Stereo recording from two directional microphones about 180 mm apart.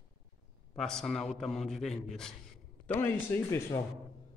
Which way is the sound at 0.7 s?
Centre (ahead or behind).